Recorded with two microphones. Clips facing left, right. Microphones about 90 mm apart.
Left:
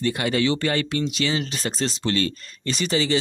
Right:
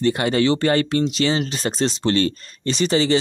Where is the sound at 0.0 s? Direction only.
35° right (ahead or behind).